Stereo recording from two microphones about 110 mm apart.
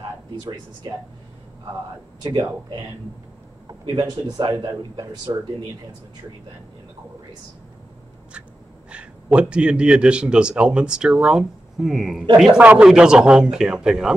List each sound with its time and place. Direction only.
2.3 s speech: 35° right (ahead or behind)
8.9 s a man's voice: 10° right (ahead or behind)